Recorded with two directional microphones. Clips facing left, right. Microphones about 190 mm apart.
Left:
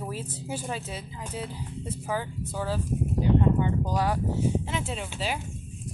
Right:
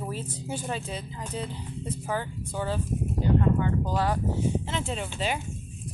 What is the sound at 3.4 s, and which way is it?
Speech, 20° left (ahead or behind).